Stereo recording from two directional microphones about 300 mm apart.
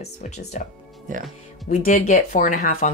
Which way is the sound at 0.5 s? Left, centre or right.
Left.